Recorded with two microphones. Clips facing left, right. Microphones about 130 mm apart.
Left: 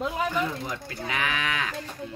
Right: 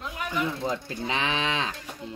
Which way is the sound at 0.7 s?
25° right (ahead or behind).